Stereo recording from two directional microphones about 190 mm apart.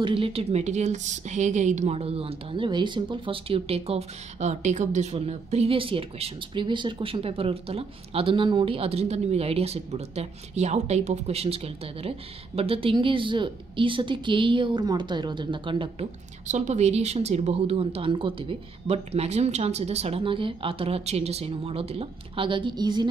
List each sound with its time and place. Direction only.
0.0 s a woman's voice: 30° right (ahead or behind)
16.4 s a woman's voice: 40° right (ahead or behind); by 23.0 s 20° right (ahead or behind)